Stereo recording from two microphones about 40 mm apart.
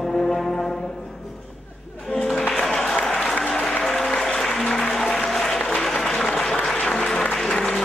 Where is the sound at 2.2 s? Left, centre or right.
Centre.